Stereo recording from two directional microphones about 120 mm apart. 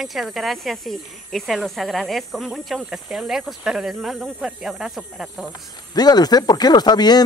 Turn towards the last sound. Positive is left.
turn(degrees=35)  # may be behind; listen again after turning